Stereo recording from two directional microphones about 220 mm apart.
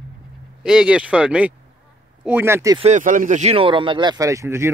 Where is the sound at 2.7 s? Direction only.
30° right (ahead or behind); by 4.7 s 15° right (ahead or behind).